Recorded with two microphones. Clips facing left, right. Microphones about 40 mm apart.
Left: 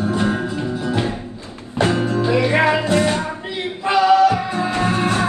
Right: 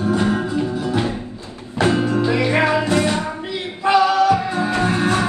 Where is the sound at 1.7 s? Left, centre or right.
Right.